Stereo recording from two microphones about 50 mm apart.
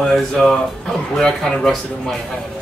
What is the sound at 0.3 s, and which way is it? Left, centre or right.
Speech, centre.